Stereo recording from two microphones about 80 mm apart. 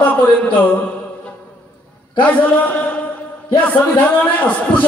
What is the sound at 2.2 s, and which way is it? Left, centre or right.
A man's voice, centre.